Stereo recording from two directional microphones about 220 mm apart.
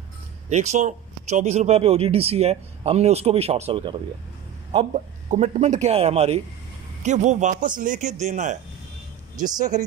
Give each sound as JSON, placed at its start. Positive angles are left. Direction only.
{"t": 0.5, "sound": "a man's voice", "side_deg": -30}
{"t": 9.6, "sound": "a man's voice", "side_deg": -35}